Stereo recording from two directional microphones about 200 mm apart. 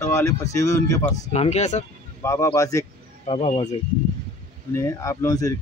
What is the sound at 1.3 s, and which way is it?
Speech, 35° left (ahead or behind).